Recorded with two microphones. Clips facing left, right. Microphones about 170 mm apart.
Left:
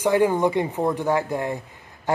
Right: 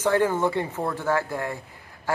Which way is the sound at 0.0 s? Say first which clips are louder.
Left 3 dB; 15° left (ahead or behind).